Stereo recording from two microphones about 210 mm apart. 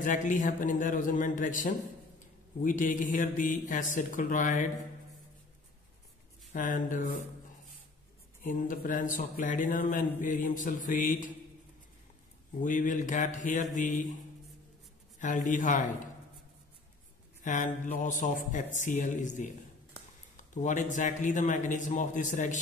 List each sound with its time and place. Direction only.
0.0 s a man's voice: 40° left (ahead or behind)
6.5 s a man's voice: 40° left (ahead or behind)
8.5 s a man's voice: 40° left (ahead or behind)
12.6 s a man's voice: 40° left (ahead or behind)
15.1 s a man's voice: 35° left (ahead or behind)
17.4 s a man's voice: 35° left (ahead or behind)